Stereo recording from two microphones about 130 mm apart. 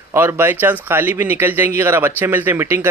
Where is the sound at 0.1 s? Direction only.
15° right (ahead or behind).